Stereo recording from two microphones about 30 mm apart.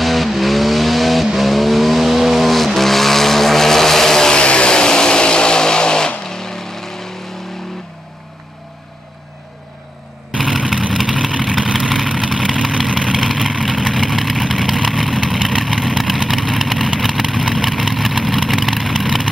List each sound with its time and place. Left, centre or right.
0.0 s vehicle: centre
4.3 s vehicle: left; by 7.1 s centre
10.3 s vehicle: centre